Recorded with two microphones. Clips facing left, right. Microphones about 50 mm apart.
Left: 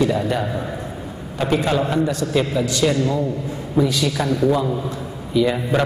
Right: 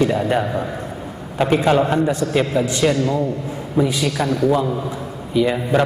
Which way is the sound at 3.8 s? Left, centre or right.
Right.